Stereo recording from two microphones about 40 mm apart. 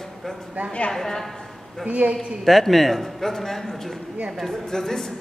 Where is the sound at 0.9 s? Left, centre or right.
Centre.